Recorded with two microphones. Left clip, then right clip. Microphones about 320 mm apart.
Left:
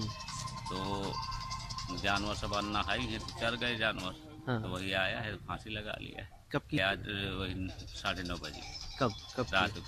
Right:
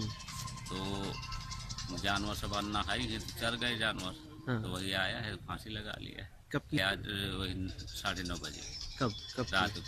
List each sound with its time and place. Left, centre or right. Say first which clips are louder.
0.0 s music: left 2 dB; centre
2.0 s speech: left 2 dB; centre